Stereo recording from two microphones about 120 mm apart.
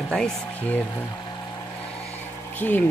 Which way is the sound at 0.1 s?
5° left (ahead or behind).